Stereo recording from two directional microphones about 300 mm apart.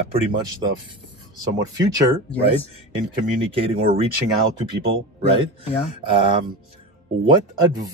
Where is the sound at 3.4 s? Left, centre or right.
Centre.